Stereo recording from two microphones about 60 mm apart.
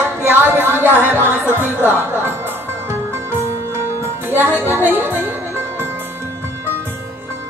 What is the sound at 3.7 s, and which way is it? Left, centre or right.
Music, right.